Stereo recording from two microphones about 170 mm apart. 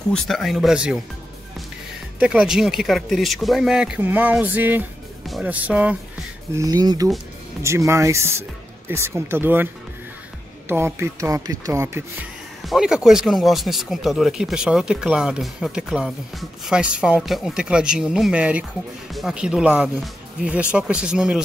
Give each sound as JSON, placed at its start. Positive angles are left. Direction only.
{"t": 0.1, "sound": "speech", "side_deg": 0}
{"t": 2.1, "sound": "speech", "side_deg": -5}
{"t": 6.5, "sound": "speech", "side_deg": -20}
{"t": 10.7, "sound": "speech", "side_deg": -15}
{"t": 12.6, "sound": "speech", "side_deg": -5}